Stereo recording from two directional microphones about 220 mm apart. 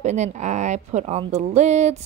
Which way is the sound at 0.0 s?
30° right (ahead or behind).